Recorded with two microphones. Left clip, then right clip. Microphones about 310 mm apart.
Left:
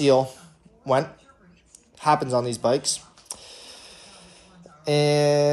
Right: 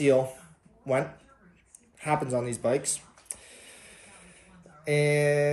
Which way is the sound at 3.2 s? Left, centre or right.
Centre.